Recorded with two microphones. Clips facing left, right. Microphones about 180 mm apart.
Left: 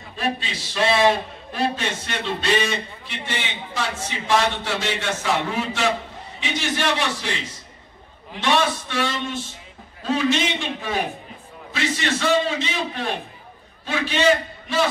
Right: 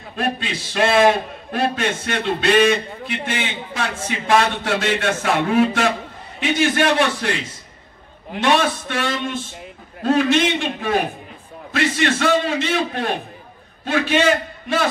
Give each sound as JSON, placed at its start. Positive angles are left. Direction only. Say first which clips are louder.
{"t": 0.1, "sound": "a man's voice", "louder": "right 3 dB", "side_deg": -55}
{"t": 8.3, "sound": "a man's voice", "louder": "right 3 dB", "side_deg": -55}